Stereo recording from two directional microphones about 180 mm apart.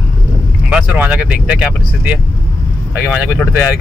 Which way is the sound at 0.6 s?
5° right (ahead or behind).